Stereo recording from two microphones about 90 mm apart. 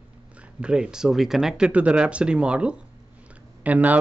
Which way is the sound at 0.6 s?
10° right (ahead or behind).